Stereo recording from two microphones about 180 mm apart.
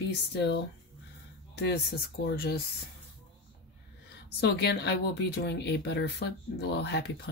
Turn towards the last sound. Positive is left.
turn(degrees=65)  # may be behind; listen again after turning